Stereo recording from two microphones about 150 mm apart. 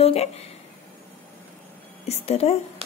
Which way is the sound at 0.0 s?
45° left (ahead or behind).